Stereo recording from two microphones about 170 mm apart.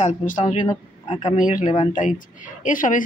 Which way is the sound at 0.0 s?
45° left (ahead or behind).